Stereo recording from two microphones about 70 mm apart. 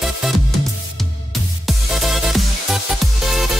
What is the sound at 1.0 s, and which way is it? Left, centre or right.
Music, centre.